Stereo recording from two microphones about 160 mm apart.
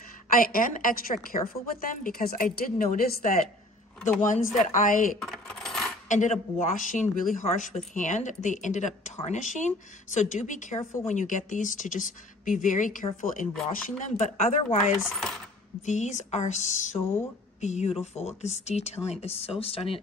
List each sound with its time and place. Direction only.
0.3 s a woman's voice: 60° left (ahead or behind)
4.6 s a woman's voice: 55° left (ahead or behind)
5.2 s coin: 5° left (ahead or behind)
6.0 s a woman's voice: 50° left (ahead or behind)
15.0 s coin: 5° left (ahead or behind)
15.8 s speech: 45° left (ahead or behind)
17.0 s speech: 15° left (ahead or behind)
17.6 s a woman's voice: 45° left (ahead or behind)